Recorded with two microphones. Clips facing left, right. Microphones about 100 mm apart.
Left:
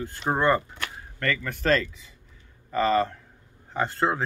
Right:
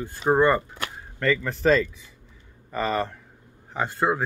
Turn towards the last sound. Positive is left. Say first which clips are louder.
# right 1 dB
turn(degrees=-15)  # may be behind; listen again after turning